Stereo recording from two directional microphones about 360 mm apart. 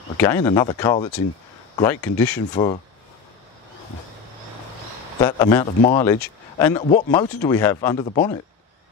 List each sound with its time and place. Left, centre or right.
0.2 s speech: centre
2.5 s speech: centre
5.2 s speech: centre
5.8 s speech: left
6.0 s speech: centre